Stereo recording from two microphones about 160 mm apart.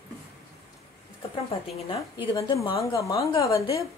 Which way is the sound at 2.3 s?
20° left (ahead or behind).